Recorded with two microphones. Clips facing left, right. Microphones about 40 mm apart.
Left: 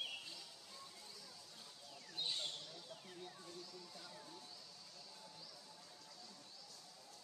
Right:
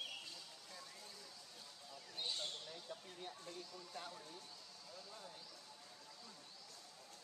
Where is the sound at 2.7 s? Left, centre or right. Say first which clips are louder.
Right 3 dB; right.